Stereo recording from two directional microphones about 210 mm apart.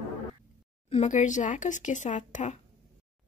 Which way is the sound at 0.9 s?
35° left (ahead or behind).